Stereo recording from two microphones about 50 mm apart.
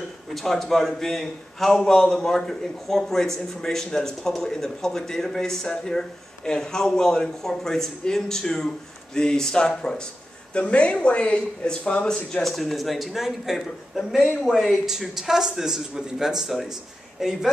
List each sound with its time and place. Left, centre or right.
0.3 s a man's voice: centre
12.3 s a man's voice: centre